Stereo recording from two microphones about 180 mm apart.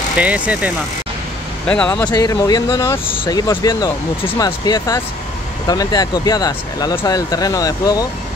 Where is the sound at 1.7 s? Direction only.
10° left (ahead or behind).